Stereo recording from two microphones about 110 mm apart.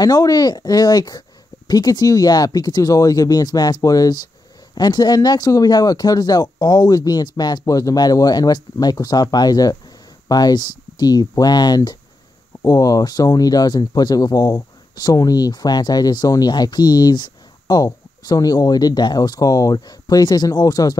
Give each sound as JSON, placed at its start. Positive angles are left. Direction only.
{"t": 0.0, "sound": "speech", "side_deg": 35}